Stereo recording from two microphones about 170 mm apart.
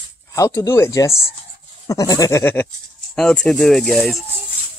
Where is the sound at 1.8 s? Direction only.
20° left (ahead or behind).